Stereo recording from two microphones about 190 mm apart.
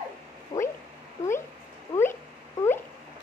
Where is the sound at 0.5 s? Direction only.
20° left (ahead or behind).